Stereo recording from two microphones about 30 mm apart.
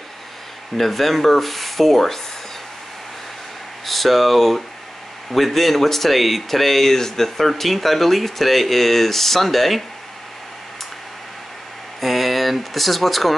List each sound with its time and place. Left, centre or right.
0.7 s speech: centre
3.8 s speech: centre
12.0 s a sound: centre